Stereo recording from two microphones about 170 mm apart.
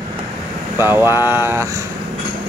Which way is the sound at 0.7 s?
15° right (ahead or behind).